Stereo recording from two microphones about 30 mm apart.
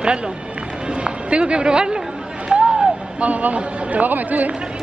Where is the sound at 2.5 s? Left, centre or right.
Right.